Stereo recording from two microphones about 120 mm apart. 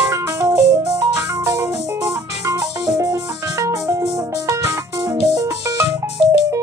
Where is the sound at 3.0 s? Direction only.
25° right (ahead or behind).